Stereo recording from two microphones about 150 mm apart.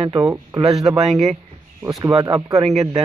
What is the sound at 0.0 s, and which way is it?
Speech, 30° right (ahead or behind).